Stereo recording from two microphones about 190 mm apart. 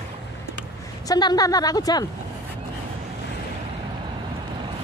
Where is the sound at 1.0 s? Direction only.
20° left (ahead or behind).